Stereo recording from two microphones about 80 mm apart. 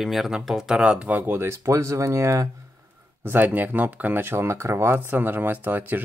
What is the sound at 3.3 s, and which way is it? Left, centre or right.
Speech, right.